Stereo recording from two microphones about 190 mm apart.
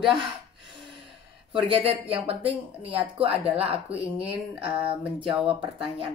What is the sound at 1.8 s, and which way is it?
Speech, 30° right (ahead or behind).